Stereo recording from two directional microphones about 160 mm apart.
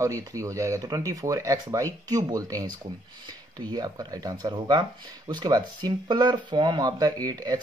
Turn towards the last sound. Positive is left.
turn(degrees=-25)  # may be behind; listen again after turning